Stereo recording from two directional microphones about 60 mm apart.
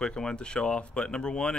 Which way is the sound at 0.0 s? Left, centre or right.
Centre.